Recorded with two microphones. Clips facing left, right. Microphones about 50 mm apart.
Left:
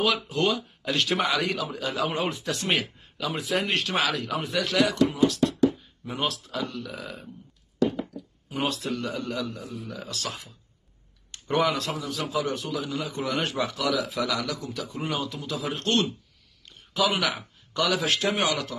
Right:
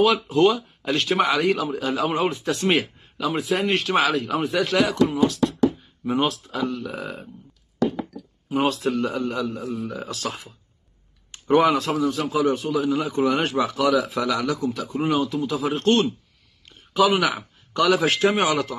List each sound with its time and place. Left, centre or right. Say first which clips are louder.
0.0 s speech: right 7 dB; centre
6.0 s speech: right 7 dB; right
6.5 s a man's voice: right 6 dB; centre
6.8 s speech: right 5 dB; right
8.5 s a man's voice: right 7 dB; centre
9.6 s a man's voice: right 8 dB; right
9.8 s speech: right 5 dB; right
11.3 s a man's voice: right 7 dB; centre
17.1 s speech: right 6 dB; centre
17.9 s a man's voice: right 6 dB; right